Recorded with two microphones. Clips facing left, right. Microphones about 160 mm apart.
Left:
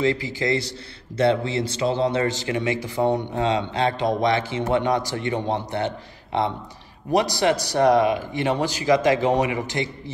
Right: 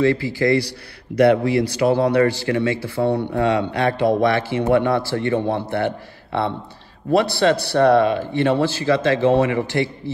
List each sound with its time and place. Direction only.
0.0 s a man's voice: 20° left (ahead or behind)